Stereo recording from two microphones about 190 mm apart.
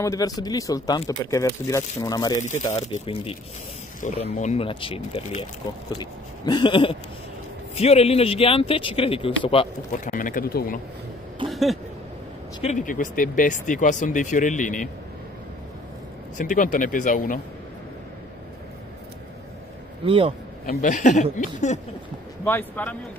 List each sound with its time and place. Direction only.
0.0 s speech: 20° left (ahead or behind)
9.9 s speech: 45° left (ahead or behind)
11.4 s a sound: centre (ahead or behind)
12.6 s speech: 40° left (ahead or behind)
16.3 s speech: 40° left (ahead or behind)
20.1 s speech: 30° right (ahead or behind)
20.6 s speech: 40° left (ahead or behind)
22.4 s speech: 10° left (ahead or behind)